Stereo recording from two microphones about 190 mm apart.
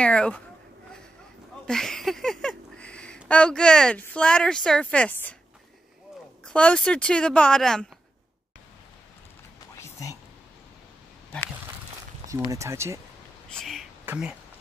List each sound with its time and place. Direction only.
0.0 s speech: 5° left (ahead or behind)
1.7 s a sound: centre (ahead or behind)
3.3 s speech: 5° left (ahead or behind)
6.4 s speech: 5° left (ahead or behind)
9.8 s whispering: 15° left (ahead or behind)
12.4 s speech: 15° right (ahead or behind)
13.5 s a sound: centre (ahead or behind)
14.0 s speech: 5° right (ahead or behind)